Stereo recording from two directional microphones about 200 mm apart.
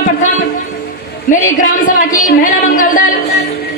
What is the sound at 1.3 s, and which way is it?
A woman's voice, 40° left (ahead or behind).